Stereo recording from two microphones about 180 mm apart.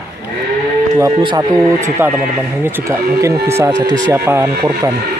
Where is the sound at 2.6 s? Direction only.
15° right (ahead or behind).